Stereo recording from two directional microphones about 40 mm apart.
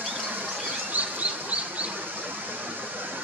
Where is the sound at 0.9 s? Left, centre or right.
Right.